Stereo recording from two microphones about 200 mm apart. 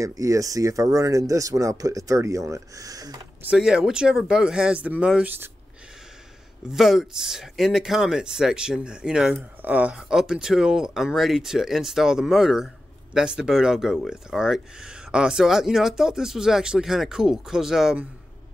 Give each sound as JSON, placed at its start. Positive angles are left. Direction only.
{"t": 0.0, "sound": "speech", "side_deg": -15}
{"t": 3.4, "sound": "speech", "side_deg": -5}
{"t": 6.7, "sound": "speech", "side_deg": 0}